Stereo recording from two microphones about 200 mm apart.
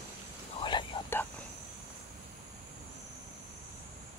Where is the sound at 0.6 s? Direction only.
20° left (ahead or behind).